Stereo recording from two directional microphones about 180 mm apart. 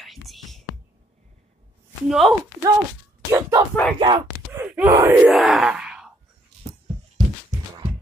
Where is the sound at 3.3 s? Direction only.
20° right (ahead or behind).